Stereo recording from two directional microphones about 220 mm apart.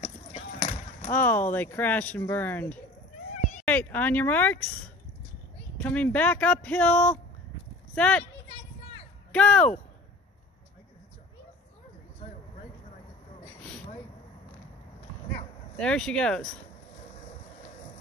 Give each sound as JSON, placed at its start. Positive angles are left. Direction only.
{"t": 0.6, "sound": "basketball bounce", "side_deg": 35}
{"t": 1.1, "sound": "speech", "side_deg": 10}
{"t": 5.8, "sound": "speech", "side_deg": 5}
{"t": 9.3, "sound": "speech", "side_deg": 5}
{"t": 15.8, "sound": "speech", "side_deg": 5}